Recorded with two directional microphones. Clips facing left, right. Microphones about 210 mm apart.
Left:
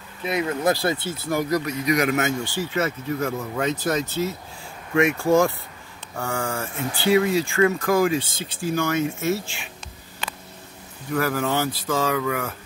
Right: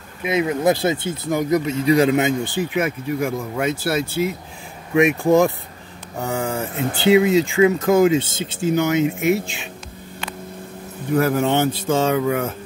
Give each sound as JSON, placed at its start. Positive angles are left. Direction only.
{"t": 0.2, "sound": "speech", "side_deg": -20}
{"t": 11.1, "sound": "speech", "side_deg": -25}